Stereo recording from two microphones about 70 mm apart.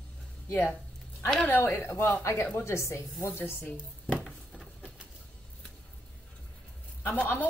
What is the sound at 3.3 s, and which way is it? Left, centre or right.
Speech, left.